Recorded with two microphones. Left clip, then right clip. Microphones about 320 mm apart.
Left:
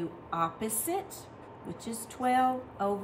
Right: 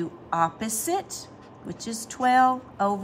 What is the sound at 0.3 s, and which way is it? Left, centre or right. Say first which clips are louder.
A woman's voice: right 7 dB; right.